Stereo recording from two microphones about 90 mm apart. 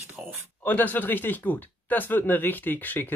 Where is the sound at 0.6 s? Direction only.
20° left (ahead or behind).